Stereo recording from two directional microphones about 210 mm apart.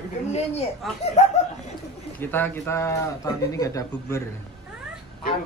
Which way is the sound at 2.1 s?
10° left (ahead or behind).